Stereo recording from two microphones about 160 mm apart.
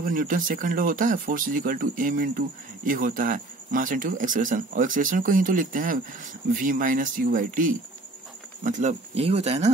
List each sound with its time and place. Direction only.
0.0 s speech: 60° right (ahead or behind); by 9.7 s 40° right (ahead or behind)